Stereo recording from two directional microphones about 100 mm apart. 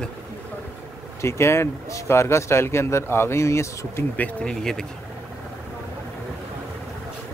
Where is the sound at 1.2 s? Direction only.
25° left (ahead or behind).